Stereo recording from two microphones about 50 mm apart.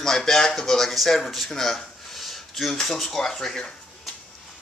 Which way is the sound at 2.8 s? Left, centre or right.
Centre.